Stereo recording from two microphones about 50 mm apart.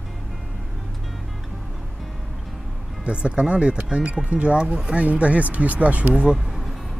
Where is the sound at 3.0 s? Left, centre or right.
Right.